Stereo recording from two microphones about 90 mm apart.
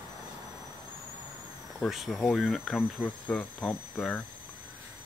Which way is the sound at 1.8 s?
5° right (ahead or behind).